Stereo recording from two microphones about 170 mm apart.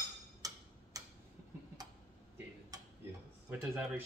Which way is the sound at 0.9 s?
20° right (ahead or behind).